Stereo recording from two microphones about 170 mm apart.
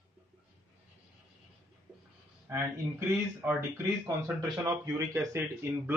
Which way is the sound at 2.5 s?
10° right (ahead or behind).